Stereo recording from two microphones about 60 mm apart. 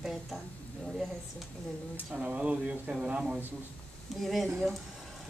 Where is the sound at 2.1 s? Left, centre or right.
Right.